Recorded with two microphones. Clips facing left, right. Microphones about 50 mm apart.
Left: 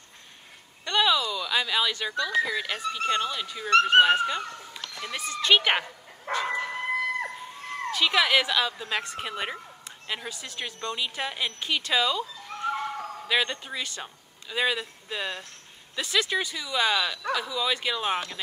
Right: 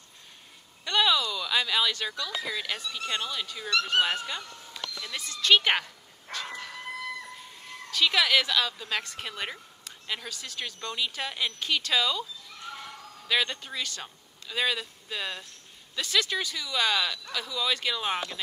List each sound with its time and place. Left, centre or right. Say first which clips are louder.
0.8 s a sound: left 1 dB; centre
2.4 s a woman's voice: left 3 dB; centre
3.1 s speech: left 6 dB; left
3.3 s a woman's voice: left 2 dB; centre
3.7 s speech: left 8 dB; left
5.1 s speech: left 1 dB; left
6.3 s dog: left 9 dB; left
7.9 s a woman's voice: left 1 dB; centre
12.4 s neigh: left 11 dB; left
13.3 s a woman's voice: left 1 dB; centre